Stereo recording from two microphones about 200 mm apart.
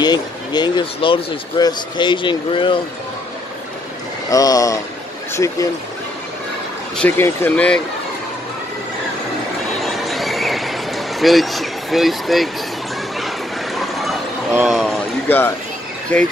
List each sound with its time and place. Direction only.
0.0 s speech: 20° left (ahead or behind)
4.3 s speech: 15° left (ahead or behind)
7.0 s speech: 10° left (ahead or behind)
9.8 s a sound: centre (ahead or behind)
13.7 s a sound: centre (ahead or behind)
14.7 s speech: 5° left (ahead or behind)